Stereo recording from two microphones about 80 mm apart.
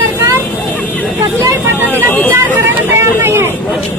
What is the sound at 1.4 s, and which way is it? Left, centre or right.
Vehicle, right.